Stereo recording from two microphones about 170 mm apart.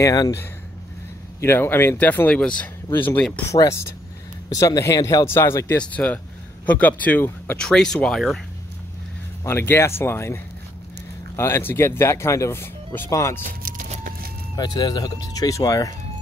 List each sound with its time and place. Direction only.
0.0 s speech: 20° left (ahead or behind)
1.4 s speech: 15° left (ahead or behind)
9.4 s speech: 15° left (ahead or behind)
13.4 s a sound: 55° right (ahead or behind)
14.6 s speech: 25° left (ahead or behind)